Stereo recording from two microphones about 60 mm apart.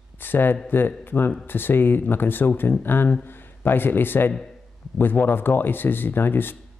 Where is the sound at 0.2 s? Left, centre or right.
Left.